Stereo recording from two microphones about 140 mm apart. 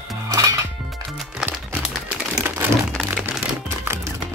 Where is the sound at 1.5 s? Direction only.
10° right (ahead or behind).